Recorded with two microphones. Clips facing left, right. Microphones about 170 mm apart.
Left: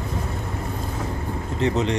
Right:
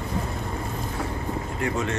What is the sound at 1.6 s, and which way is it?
Speech, 20° left (ahead or behind).